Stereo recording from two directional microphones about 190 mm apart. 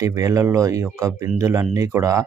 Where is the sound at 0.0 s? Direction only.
15° right (ahead or behind).